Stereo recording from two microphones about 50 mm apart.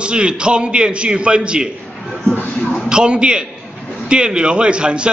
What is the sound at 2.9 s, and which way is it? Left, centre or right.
A man's voice, centre.